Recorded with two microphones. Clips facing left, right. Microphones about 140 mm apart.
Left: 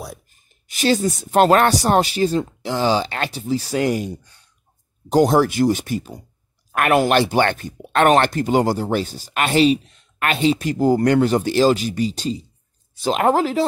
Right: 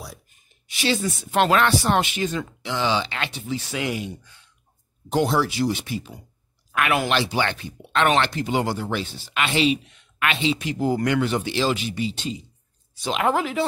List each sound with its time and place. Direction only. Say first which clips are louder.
0.7 s speech: left 6 dB; 45° left (ahead or behind)